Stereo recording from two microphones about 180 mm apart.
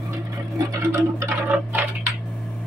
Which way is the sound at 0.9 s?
15° right (ahead or behind).